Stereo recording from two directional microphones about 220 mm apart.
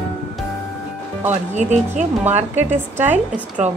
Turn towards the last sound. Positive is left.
turn(degrees=-30)  # may be behind; listen again after turning